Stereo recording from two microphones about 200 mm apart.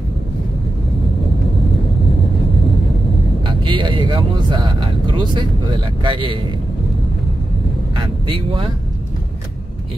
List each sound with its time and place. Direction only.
3.4 s speech: 25° right (ahead or behind)
7.9 s speech: 25° right (ahead or behind)